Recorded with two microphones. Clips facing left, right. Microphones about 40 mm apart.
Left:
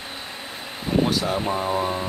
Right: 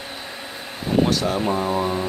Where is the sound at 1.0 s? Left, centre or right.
Centre.